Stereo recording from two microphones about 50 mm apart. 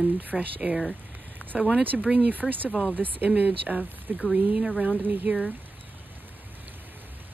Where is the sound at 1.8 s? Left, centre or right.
Right.